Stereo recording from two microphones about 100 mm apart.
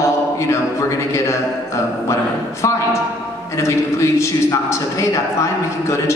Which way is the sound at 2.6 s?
30° left (ahead or behind).